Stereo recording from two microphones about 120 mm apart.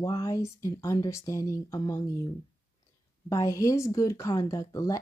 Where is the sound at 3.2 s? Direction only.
25° left (ahead or behind).